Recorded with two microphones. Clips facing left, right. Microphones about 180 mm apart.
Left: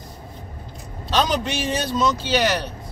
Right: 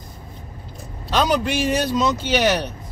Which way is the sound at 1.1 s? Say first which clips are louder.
Right 2 dB; 15° right (ahead or behind).